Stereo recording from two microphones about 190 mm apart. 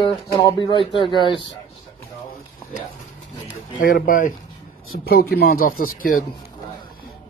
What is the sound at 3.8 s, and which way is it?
Speech, 50° left (ahead or behind).